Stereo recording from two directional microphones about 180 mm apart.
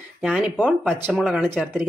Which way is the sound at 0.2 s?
Centre (ahead or behind).